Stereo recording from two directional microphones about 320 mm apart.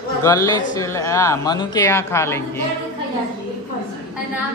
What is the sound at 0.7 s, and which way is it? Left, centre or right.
A woman's voice, centre.